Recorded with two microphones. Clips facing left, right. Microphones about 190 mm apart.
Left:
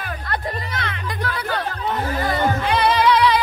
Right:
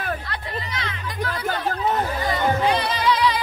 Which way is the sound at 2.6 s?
60° left (ahead or behind).